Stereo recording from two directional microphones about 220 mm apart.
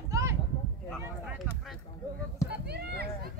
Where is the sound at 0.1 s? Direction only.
15° right (ahead or behind).